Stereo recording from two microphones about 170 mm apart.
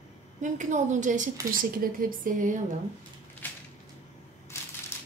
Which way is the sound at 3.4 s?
10° left (ahead or behind).